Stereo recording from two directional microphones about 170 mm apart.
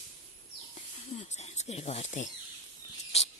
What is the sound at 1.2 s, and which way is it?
Speech, 40° left (ahead or behind).